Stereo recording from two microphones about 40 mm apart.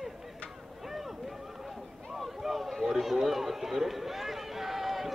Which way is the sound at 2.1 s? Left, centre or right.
Centre.